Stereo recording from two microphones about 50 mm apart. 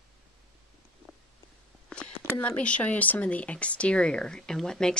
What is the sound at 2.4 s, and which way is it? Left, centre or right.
Speech, left.